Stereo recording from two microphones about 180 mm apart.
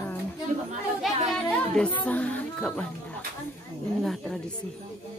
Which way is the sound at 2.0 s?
10° left (ahead or behind).